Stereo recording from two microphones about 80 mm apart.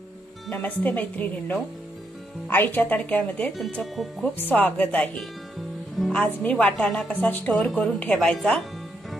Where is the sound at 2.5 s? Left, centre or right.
Left.